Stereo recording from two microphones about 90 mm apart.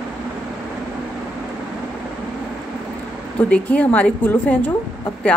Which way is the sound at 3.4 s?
15° left (ahead or behind).